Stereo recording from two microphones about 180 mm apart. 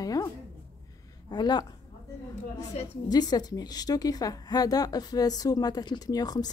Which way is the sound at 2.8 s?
35° left (ahead or behind).